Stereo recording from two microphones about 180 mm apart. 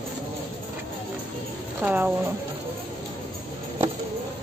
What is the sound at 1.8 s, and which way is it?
Speech, 10° right (ahead or behind).